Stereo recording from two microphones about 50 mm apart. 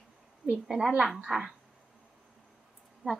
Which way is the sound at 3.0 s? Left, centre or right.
Right.